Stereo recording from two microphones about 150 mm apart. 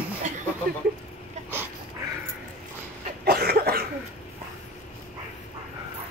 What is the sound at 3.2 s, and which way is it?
Cough, 90° right.